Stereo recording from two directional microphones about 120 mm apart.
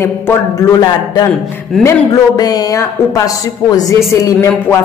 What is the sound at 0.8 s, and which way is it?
A woman's voice, 35° left (ahead or behind).